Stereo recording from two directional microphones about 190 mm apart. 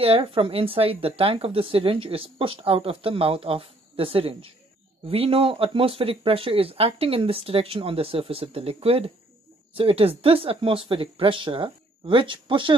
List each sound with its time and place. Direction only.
0.0 s speech: 30° right (ahead or behind)